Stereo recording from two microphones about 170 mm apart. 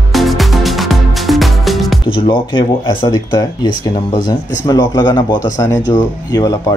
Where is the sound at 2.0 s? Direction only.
30° left (ahead or behind).